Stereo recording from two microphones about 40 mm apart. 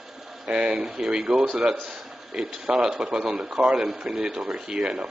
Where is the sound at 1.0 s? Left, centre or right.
Right.